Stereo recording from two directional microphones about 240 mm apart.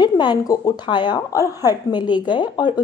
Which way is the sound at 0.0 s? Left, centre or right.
Centre.